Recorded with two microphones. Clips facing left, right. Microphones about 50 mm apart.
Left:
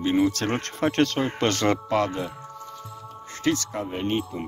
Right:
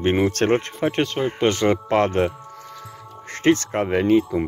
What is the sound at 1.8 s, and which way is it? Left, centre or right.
Speech, right.